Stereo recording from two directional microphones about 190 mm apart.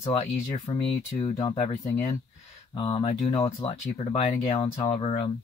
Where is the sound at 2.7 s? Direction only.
30° left (ahead or behind).